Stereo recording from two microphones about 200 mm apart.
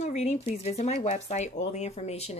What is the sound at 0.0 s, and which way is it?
Speech, 35° left (ahead or behind).